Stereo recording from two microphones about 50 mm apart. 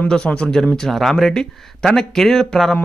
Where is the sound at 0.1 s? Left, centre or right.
Centre.